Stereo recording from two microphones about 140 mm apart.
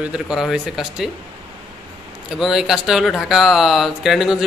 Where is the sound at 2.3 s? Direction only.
5° right (ahead or behind).